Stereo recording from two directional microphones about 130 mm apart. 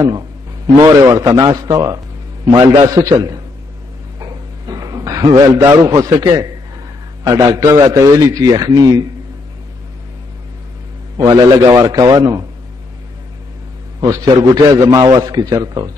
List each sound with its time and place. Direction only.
0.7 s a man's voice: 30° right (ahead or behind)
4.2 s a sound: 30° right (ahead or behind)
7.2 s a man's voice: 25° right (ahead or behind)
11.1 s a man's voice: 30° right (ahead or behind)
14.0 s a man's voice: 25° right (ahead or behind)